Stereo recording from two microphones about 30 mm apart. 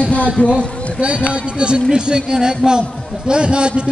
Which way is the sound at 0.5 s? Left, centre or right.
Right.